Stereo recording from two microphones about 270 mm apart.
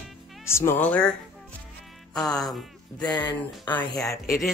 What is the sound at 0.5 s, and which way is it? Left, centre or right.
Speech, centre.